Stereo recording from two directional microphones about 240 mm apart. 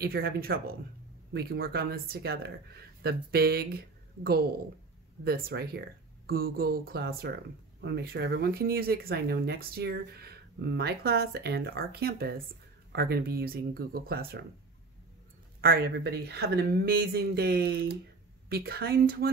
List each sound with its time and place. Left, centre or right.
0.0 s speech: right
15.6 s speech: right